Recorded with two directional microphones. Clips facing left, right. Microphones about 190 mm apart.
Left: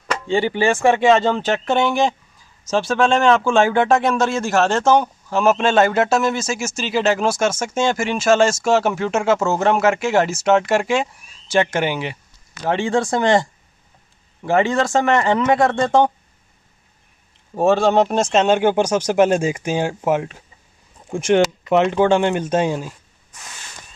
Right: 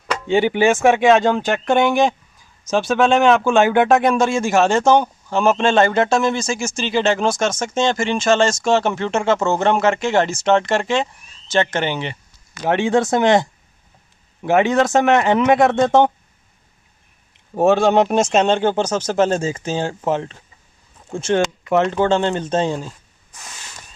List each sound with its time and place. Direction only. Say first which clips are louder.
0.3 s speech: right 3 dB; 20° right (ahead or behind)
4.8 s a man's voice: right 1 dB; centre (ahead or behind)
12.6 s speech: right 2 dB; 15° right (ahead or behind)
14.5 s speech: right 2 dB; 15° right (ahead or behind)
17.6 s speech: right 1 dB; 15° right (ahead or behind)
18.2 s speech: even; centre (ahead or behind)